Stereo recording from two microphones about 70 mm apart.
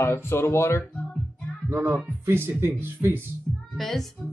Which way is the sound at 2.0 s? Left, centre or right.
Right.